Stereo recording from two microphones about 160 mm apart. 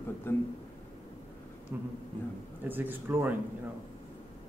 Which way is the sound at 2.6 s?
10° right (ahead or behind).